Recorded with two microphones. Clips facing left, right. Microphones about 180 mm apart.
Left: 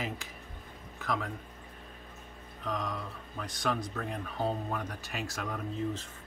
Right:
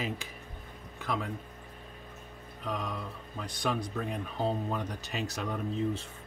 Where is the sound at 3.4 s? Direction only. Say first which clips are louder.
Right 1 dB; 15° right (ahead or behind).